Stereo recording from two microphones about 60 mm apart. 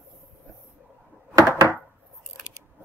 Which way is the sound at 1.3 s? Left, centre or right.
Right.